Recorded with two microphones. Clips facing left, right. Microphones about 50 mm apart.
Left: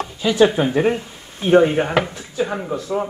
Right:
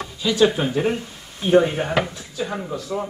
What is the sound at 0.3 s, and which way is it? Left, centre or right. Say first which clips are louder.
Speech: left 3 dB; left.